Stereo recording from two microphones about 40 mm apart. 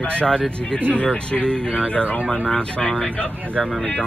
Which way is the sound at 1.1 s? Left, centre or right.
Left.